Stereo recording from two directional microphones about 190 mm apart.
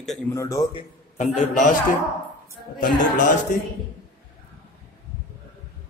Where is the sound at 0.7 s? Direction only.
35° left (ahead or behind).